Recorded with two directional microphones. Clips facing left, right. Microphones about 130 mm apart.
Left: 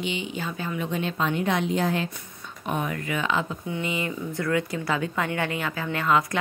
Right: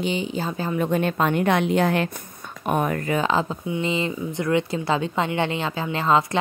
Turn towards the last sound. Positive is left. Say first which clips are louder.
# right 3 dB
turn(degrees=-30)  # may be behind; listen again after turning